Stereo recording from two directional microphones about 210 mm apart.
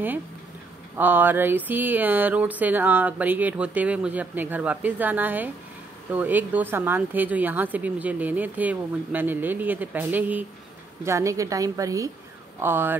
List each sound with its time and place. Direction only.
0.9 s speech: 10° right (ahead or behind)